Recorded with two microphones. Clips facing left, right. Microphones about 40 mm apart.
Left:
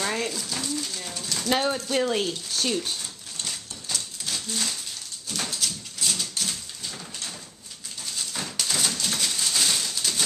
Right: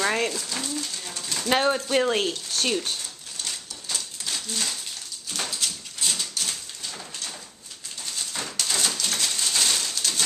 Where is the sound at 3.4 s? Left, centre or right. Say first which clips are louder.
Even; centre.